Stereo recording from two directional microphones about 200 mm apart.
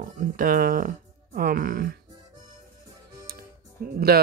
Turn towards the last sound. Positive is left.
turn(degrees=-50)  # may be behind; listen again after turning